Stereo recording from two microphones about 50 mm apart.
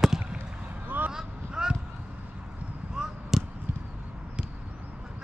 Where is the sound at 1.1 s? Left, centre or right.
Centre.